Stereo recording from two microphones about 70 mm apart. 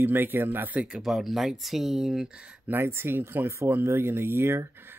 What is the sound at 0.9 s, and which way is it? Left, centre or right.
Speech, centre.